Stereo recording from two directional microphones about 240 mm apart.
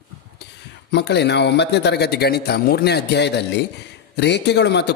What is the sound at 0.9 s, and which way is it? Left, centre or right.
Speech, left.